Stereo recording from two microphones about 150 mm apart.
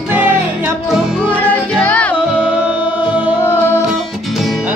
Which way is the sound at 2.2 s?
5° right (ahead or behind).